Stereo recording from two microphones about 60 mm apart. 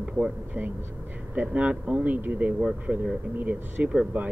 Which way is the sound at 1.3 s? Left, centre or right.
Right.